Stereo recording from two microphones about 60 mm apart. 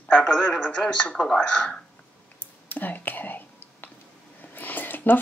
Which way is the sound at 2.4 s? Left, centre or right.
Left.